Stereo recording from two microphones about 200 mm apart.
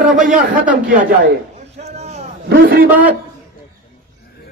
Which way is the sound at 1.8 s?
35° right (ahead or behind).